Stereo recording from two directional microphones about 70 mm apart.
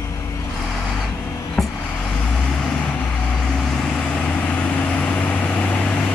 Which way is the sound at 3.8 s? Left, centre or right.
Centre.